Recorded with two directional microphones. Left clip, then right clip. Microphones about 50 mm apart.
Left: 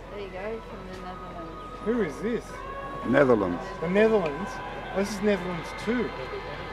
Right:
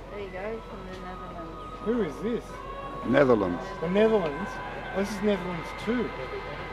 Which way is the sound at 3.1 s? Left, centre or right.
Centre.